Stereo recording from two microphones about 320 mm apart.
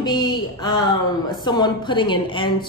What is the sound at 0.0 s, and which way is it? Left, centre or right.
A woman's voice, centre.